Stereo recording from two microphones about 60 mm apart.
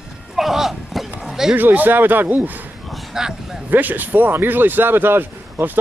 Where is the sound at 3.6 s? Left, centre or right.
Right.